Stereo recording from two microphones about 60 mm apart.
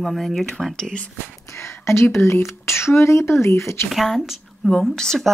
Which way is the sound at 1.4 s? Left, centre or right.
Left.